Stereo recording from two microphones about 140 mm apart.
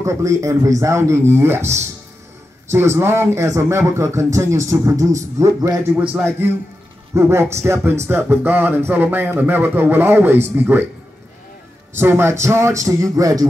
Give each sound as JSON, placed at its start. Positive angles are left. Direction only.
{"t": 0.0, "sound": "a man's voice", "side_deg": -20}
{"t": 7.2, "sound": "a man's voice", "side_deg": -20}
{"t": 11.9, "sound": "a man's voice", "side_deg": -15}